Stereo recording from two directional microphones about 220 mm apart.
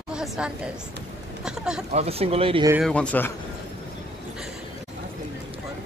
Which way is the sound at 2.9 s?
5° left (ahead or behind).